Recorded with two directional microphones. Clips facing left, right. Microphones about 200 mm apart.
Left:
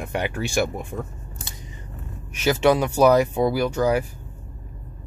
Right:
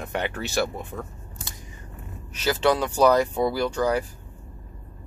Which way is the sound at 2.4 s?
10° left (ahead or behind).